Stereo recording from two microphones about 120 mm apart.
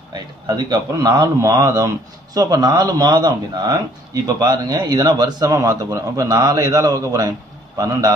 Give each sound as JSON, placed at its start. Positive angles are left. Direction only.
{"t": 0.1, "sound": "a man's voice", "side_deg": -35}